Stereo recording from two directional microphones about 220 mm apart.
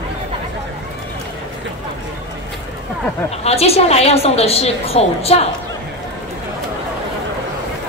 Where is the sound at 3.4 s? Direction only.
30° left (ahead or behind).